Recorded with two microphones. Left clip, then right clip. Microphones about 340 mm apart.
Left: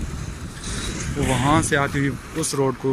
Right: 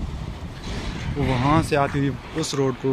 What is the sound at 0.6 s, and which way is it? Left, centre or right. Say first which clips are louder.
Boat: left 3 dB; right.